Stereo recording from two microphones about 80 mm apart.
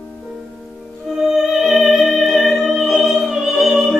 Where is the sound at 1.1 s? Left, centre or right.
Centre.